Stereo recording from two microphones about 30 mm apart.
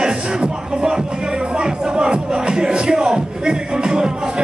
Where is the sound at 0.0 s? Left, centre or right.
Right.